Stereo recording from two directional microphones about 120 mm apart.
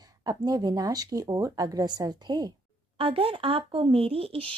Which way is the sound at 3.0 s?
50° right (ahead or behind).